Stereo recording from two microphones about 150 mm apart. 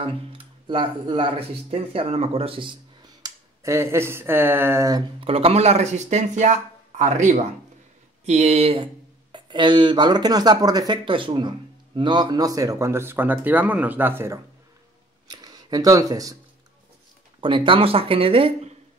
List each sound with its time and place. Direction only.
0.0 s speech: 35° right (ahead or behind)
3.2 s speech: 25° right (ahead or behind)
5.2 s speech: 40° right (ahead or behind)
9.3 s speech: 30° right (ahead or behind)
17.4 s speech: 35° right (ahead or behind)